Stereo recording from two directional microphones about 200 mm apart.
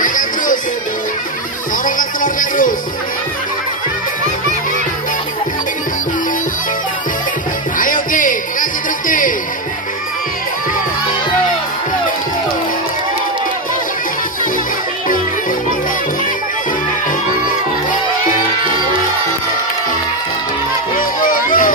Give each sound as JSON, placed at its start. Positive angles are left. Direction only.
{"t": 0.0, "sound": "music", "side_deg": 40}
{"t": 1.9, "sound": "music", "side_deg": 40}
{"t": 7.7, "sound": "music", "side_deg": 40}
{"t": 20.9, "sound": "a sound", "side_deg": 45}